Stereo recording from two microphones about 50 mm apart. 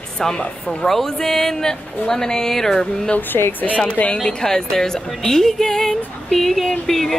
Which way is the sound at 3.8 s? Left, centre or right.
Left.